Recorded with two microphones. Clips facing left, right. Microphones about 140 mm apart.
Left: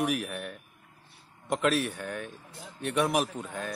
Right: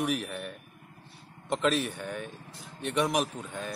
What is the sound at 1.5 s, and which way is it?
A man's voice, 5° left (ahead or behind).